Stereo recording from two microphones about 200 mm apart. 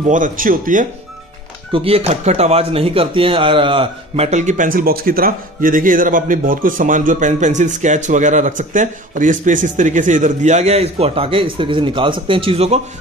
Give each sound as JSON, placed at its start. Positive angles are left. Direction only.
{"t": 0.0, "sound": "speech", "side_deg": -40}
{"t": 1.7, "sound": "a man's voice", "side_deg": -30}